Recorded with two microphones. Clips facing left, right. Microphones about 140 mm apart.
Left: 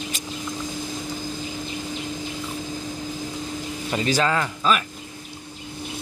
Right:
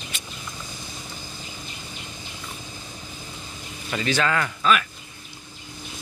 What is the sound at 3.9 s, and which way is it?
Speech, 30° left (ahead or behind).